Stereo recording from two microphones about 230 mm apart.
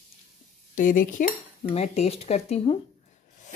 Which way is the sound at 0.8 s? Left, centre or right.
Left.